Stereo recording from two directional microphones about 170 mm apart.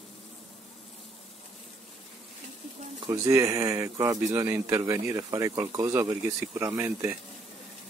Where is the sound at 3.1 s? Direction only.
20° right (ahead or behind).